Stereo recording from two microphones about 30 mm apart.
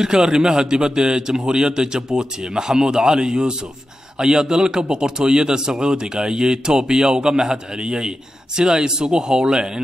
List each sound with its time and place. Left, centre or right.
0.0 s a man's voice: right